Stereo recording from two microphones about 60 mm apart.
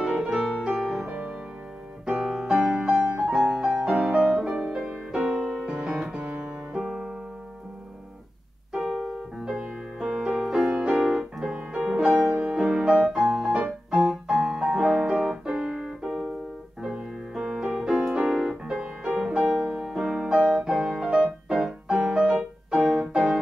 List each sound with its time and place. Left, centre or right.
0.0 s piano: centre
1.0 s music: right
2.0 s piano: centre
2.5 s music: right
3.2 s music: centre
3.9 s music: centre
8.7 s music: centre
14.0 s keyboard: centre
17.3 s music: centre
22.8 s keyboard: centre